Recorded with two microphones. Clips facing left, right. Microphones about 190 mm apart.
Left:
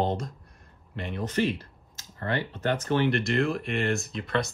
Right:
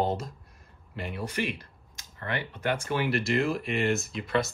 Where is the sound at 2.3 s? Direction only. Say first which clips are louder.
Left 2 dB; 15° right (ahead or behind).